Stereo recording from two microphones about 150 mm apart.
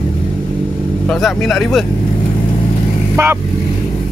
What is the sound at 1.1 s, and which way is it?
Speech, centre (ahead or behind).